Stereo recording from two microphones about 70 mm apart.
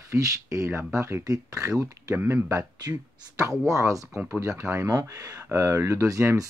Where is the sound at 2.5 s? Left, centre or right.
Right.